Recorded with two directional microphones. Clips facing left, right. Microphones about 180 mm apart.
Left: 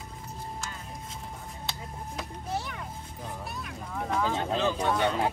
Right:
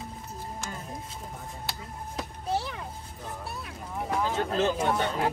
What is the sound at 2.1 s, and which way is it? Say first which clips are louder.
Children playing: right 4 dB; 30° right (ahead or behind).